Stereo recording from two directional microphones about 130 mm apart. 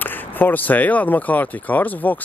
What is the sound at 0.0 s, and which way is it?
Speech, 15° left (ahead or behind).